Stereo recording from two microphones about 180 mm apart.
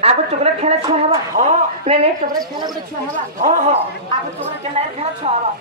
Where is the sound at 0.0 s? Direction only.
35° right (ahead or behind).